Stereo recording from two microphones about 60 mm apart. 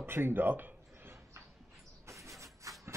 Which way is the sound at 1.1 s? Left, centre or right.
Right.